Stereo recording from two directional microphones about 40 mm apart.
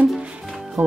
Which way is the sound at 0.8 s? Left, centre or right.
Right.